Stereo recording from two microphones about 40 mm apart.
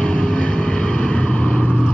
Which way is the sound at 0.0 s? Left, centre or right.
Left.